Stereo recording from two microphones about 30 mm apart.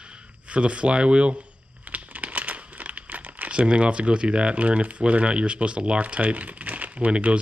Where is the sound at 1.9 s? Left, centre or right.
Right.